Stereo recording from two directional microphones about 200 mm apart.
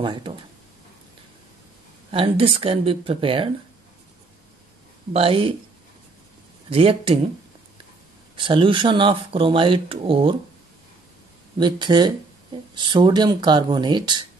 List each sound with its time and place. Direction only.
0.0 s speech: 25° right (ahead or behind)
2.0 s speech: 25° right (ahead or behind)
5.1 s speech: 25° right (ahead or behind)
6.7 s speech: 30° right (ahead or behind)
8.4 s speech: 25° right (ahead or behind)
11.5 s speech: 20° right (ahead or behind)